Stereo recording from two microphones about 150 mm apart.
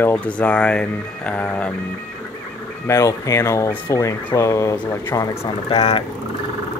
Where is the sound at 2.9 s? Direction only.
20° left (ahead or behind).